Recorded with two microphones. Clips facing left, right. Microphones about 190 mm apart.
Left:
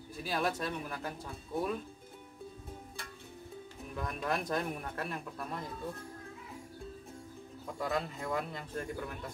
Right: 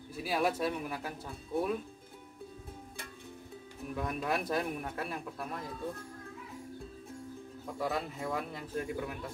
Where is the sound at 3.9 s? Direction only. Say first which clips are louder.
Right 2 dB; 5° right (ahead or behind).